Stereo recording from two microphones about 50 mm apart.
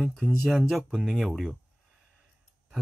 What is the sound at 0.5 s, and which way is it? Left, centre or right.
Speech, centre.